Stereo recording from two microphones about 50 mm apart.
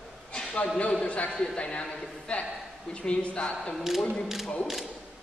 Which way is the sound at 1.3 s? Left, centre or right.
Centre.